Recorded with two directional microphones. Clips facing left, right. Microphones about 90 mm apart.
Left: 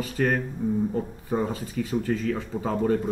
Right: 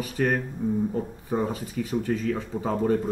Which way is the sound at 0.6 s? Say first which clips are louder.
Even; centre (ahead or behind).